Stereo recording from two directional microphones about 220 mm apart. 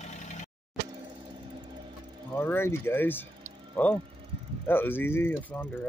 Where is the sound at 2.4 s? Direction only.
10° left (ahead or behind).